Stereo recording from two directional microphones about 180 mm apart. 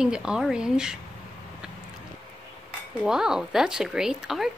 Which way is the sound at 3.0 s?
5° right (ahead or behind).